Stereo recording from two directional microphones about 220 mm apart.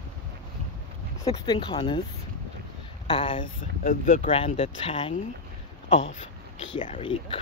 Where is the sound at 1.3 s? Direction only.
20° left (ahead or behind).